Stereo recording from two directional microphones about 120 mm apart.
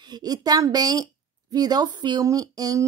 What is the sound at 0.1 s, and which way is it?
A woman's voice, 35° right (ahead or behind).